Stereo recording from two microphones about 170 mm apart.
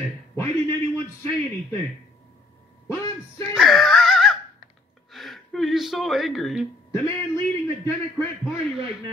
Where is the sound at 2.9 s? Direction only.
20° left (ahead or behind).